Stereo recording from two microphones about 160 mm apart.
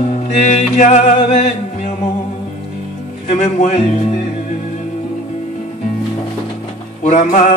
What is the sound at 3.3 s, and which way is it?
Music, 50° left (ahead or behind).